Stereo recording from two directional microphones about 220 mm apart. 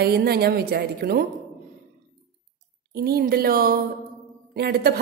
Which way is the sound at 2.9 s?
45° right (ahead or behind).